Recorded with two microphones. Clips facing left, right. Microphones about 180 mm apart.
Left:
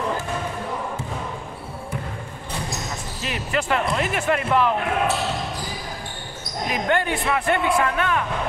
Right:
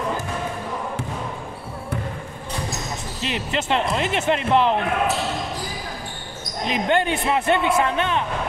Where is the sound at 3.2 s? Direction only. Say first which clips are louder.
Even; 25° right (ahead or behind).